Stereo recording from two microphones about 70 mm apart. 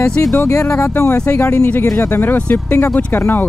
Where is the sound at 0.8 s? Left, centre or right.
Left.